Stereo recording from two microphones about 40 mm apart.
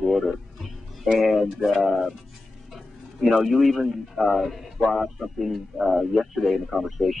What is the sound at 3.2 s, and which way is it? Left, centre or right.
A man's voice, centre.